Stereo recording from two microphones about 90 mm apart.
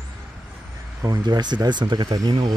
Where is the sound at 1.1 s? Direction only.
50° right (ahead or behind).